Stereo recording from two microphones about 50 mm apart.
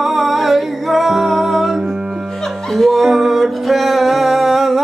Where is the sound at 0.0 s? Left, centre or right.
Centre.